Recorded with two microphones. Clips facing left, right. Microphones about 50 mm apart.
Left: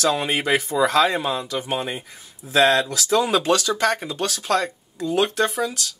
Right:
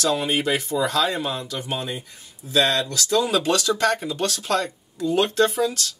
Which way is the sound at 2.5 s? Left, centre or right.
Left.